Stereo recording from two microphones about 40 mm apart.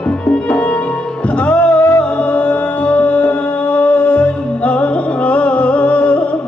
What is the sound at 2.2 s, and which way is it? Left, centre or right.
Music, left.